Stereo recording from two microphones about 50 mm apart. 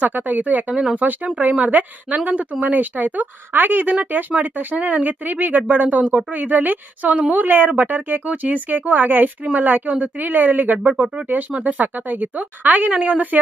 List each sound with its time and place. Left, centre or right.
0.0 s speech: right